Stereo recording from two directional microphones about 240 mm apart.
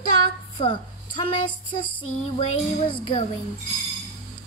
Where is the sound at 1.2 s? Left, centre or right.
Left.